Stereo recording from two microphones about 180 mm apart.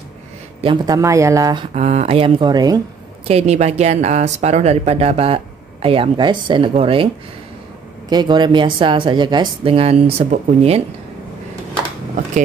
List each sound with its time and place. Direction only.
0.6 s speech: 25° right (ahead or behind)
1.7 s speech: 40° right (ahead or behind); by 2.8 s 20° right (ahead or behind)
3.3 s speech: 35° right (ahead or behind)
8.1 s speech: 25° right (ahead or behind)